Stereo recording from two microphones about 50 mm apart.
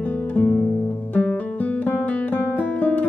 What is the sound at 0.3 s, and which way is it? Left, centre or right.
Music, left.